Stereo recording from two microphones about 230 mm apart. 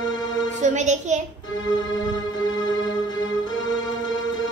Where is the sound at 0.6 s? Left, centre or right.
Right.